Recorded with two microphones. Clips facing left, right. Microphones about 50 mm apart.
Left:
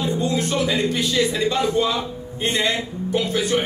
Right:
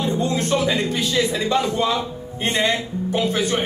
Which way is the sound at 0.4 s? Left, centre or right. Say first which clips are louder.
Right 1 dB; right.